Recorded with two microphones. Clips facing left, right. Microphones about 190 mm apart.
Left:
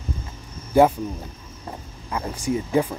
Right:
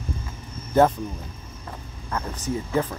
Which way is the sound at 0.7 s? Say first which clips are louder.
Left 2 dB; 10° left (ahead or behind).